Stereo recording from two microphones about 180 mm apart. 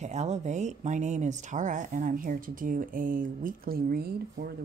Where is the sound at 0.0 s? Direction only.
40° right (ahead or behind).